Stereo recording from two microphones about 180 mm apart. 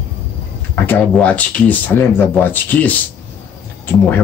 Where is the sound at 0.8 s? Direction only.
10° left (ahead or behind).